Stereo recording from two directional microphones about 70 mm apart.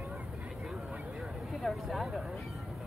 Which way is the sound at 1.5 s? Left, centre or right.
Centre.